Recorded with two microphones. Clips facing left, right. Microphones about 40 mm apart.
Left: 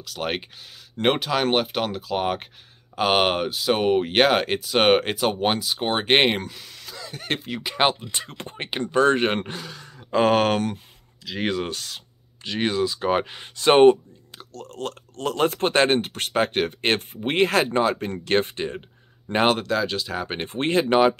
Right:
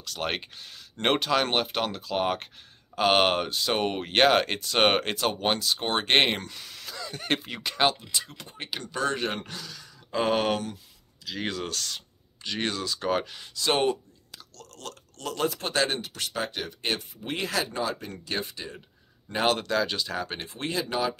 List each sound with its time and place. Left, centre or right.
0.0 s speech: centre
7.7 s speech: left
8.1 s speech: left
9.5 s speech: left
10.2 s speech: left
11.3 s speech: left
19.6 s speech: centre
20.2 s speech: left